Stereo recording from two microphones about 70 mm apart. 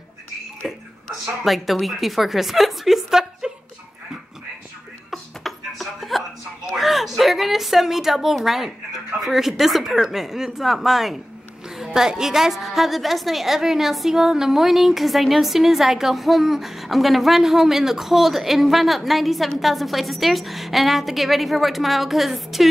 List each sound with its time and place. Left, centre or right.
0.6 s a woman's voice: centre
5.1 s a sound: centre
9.2 s a woman's voice: centre